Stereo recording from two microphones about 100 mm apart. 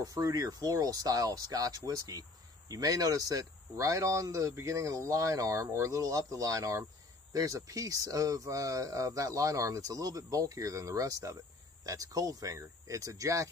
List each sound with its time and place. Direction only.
0.0 s speech: 35° right (ahead or behind)